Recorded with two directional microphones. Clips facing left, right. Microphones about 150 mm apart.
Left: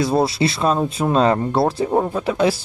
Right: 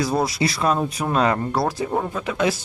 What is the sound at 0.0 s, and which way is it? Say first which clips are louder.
Speech: left 4 dB; 25° left (ahead or behind).